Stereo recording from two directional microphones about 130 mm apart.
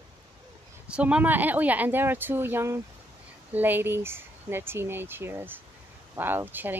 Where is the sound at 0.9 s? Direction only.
10° right (ahead or behind).